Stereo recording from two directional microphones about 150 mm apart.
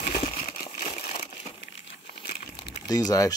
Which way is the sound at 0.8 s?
55° left (ahead or behind).